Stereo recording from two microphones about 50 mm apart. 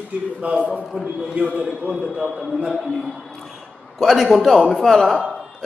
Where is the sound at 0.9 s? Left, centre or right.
Centre.